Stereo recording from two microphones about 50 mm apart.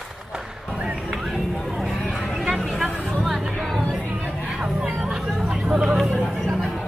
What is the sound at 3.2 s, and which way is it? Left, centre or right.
Chatter, centre.